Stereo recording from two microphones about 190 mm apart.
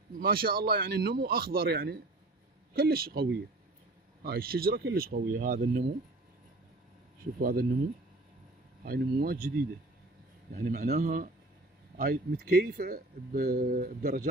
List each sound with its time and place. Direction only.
0.1 s speech: 50° right (ahead or behind)
7.3 s speech: 50° right (ahead or behind)
8.8 s speech: 50° right (ahead or behind)
10.5 s speech: 50° right (ahead or behind)